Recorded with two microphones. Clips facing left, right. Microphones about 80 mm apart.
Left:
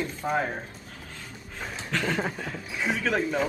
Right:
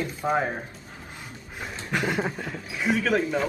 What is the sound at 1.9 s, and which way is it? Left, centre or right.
Speech, centre.